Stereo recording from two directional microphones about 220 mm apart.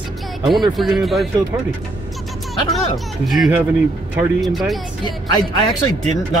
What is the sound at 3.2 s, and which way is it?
Speech, centre (ahead or behind).